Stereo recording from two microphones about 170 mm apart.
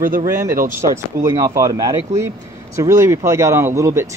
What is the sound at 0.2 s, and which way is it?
Speech, 15° right (ahead or behind).